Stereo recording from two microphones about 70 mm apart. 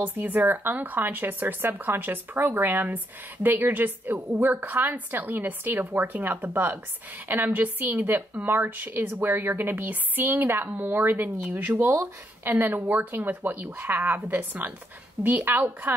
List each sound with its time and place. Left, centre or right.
0.0 s a woman's voice: right